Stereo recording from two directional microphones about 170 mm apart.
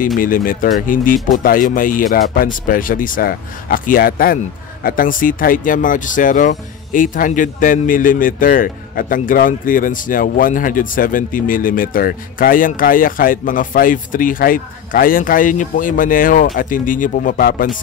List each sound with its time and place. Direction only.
0.2 s speech: 55° left (ahead or behind)